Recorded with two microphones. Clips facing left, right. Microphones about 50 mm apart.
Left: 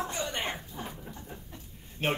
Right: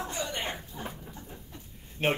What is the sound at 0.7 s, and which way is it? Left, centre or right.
Dog, left.